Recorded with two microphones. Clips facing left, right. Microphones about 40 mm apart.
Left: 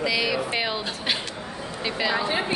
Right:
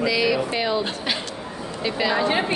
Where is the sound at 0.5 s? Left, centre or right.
Centre.